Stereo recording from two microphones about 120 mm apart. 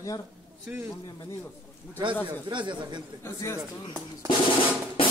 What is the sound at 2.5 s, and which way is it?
Speech, 40° right (ahead or behind).